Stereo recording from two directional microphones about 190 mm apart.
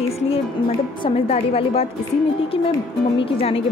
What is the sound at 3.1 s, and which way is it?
Speech, 30° left (ahead or behind).